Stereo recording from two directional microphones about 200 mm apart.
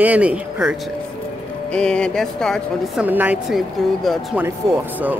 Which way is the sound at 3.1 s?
10° right (ahead or behind).